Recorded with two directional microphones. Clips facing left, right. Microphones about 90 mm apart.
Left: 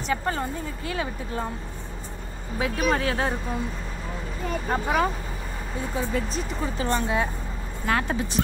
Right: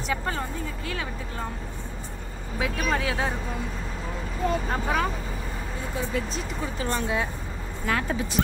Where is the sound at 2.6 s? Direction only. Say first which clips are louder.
Left 3 dB; 5° left (ahead or behind).